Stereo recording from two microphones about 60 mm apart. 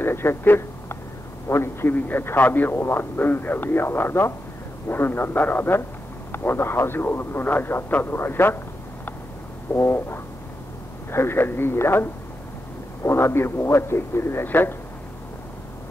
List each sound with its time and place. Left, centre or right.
0.0 s a man's voice: left
2.0 s speech: left
2.8 s speech: left
9.8 s a man's voice: left